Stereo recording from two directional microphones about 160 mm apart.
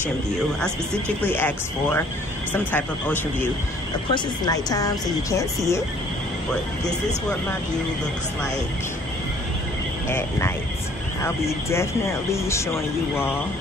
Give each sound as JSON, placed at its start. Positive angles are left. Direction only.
{"t": 0.6, "sound": "speech", "side_deg": 10}
{"t": 4.1, "sound": "speech", "side_deg": 25}
{"t": 10.0, "sound": "speech", "side_deg": 15}